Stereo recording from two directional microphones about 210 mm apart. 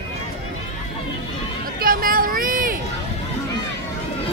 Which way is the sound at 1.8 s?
45° right (ahead or behind).